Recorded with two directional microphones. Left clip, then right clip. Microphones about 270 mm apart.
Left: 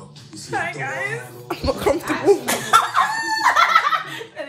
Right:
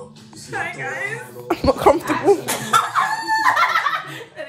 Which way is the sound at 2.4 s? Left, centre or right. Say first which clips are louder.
Left 2 dB; left.